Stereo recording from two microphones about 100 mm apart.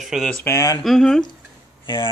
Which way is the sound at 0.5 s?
30° left (ahead or behind).